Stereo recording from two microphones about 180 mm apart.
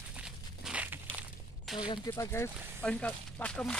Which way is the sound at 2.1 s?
15° left (ahead or behind).